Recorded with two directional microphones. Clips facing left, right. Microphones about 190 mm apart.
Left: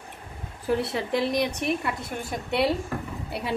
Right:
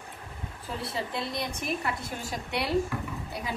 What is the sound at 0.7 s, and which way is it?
A woman's voice, 70° left (ahead or behind).